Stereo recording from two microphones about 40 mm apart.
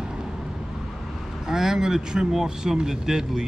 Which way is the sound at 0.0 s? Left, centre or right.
Centre.